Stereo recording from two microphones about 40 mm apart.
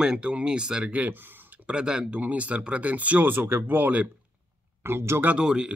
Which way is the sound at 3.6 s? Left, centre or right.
Right.